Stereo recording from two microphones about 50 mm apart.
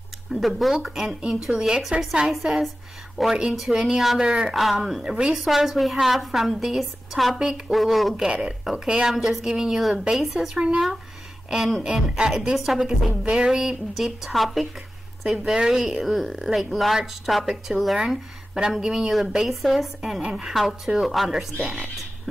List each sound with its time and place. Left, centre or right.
0.3 s a woman's voice: centre
4.6 s a woman's voice: centre
5.0 s a woman's voice: centre
7.3 s a woman's voice: centre
7.7 s a woman's voice: centre
8.2 s a woman's voice: centre
9.8 s a woman's voice: centre
13.2 s speech: right
13.5 s a woman's voice: centre